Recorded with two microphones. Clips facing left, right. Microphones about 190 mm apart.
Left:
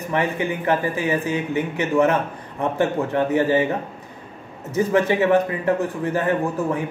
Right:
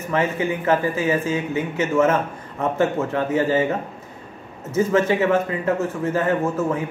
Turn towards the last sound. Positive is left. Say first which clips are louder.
# right 1 dB
turn(degrees=15)  # may be behind; listen again after turning